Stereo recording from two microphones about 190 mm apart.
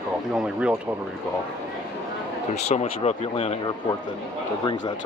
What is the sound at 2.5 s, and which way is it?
Speech, 35° left (ahead or behind).